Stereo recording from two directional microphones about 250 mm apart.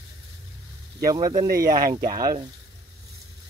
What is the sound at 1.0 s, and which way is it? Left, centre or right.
Speech, centre.